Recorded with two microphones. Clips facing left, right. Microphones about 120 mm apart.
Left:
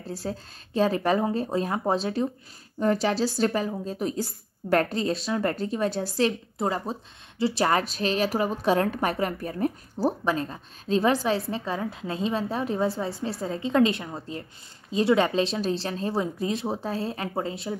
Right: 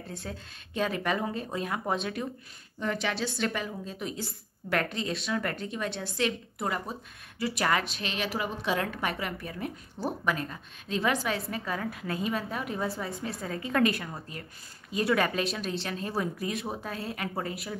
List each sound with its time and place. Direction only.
0.0 s a woman's voice: 35° left (ahead or behind)